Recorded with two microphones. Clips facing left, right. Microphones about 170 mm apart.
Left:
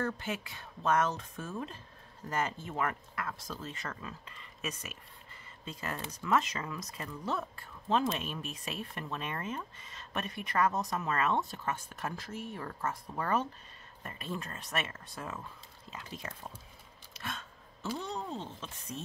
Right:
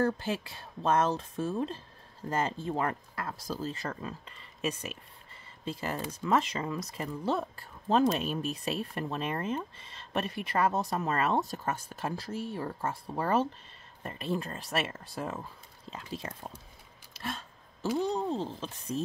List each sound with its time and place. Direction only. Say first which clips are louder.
0.0 s speech: right 6 dB; 35° right (ahead or behind)
17.1 s a sound: right 4 dB; 30° right (ahead or behind)
17.9 s speech: right 9 dB; 35° right (ahead or behind)